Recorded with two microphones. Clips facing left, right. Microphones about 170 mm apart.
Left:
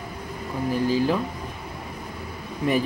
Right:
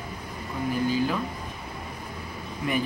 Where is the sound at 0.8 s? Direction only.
35° left (ahead or behind).